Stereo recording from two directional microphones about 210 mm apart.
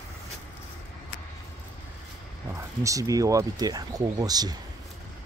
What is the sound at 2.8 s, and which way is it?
Speech, 15° right (ahead or behind).